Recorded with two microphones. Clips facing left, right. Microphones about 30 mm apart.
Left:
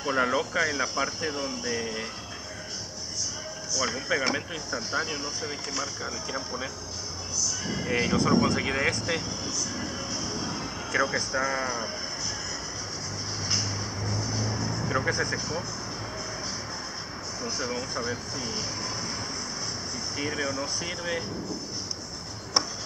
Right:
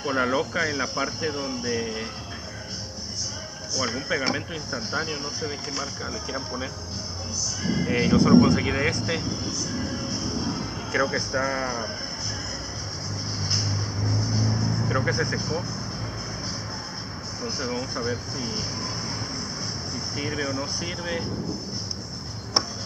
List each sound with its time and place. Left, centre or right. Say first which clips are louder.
0.0 s speech: right 2 dB; centre
3.7 s speech: right 1 dB; centre
7.8 s speech: right 4 dB; centre
8.6 s speech: right 2 dB; centre
8.9 s speech: right 2 dB; centre
13.4 s vehicle: right 1 dB; centre
14.9 s speech: right 1 dB; centre
17.4 s speech: right 2 dB; centre
20.2 s speech: right 1 dB; centre